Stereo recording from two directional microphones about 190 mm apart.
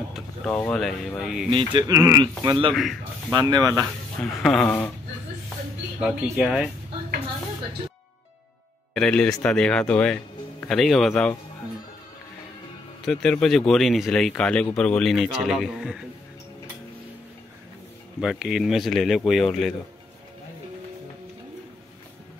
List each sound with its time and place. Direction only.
0.1 s speech: 5° left (ahead or behind)
1.5 s speech: 25° right (ahead or behind)
2.7 s speech: centre (ahead or behind)
3.3 s speech: 20° right (ahead or behind)
4.2 s speech: centre (ahead or behind)
5.9 s speech: 5° right (ahead or behind)
8.9 s speech: 5° left (ahead or behind)
13.0 s speech: 5° left (ahead or behind)
18.2 s speech: 5° right (ahead or behind)